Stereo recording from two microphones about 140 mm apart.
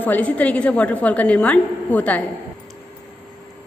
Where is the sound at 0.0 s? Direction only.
10° left (ahead or behind).